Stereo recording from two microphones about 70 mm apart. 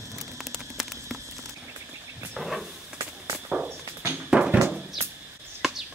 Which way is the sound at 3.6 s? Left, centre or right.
Right.